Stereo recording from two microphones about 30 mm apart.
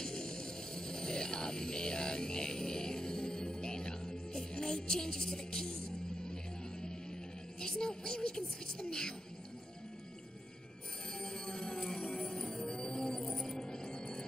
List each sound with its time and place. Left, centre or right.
0.0 s music: left
7.6 s music: left
11.1 s music: centre
13.6 s music: left